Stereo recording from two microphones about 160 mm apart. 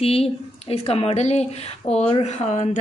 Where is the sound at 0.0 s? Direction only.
40° left (ahead or behind).